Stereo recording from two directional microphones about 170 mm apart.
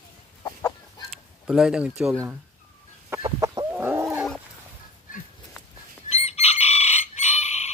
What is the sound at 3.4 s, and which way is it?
Chicken, 25° right (ahead or behind).